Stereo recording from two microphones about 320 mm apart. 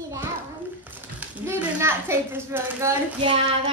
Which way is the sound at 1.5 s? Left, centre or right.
Centre.